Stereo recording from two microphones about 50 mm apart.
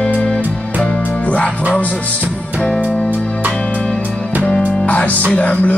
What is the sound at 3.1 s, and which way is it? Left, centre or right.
Music, left.